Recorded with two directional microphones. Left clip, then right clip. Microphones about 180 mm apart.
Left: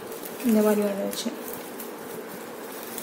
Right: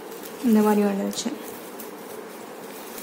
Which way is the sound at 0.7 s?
25° right (ahead or behind).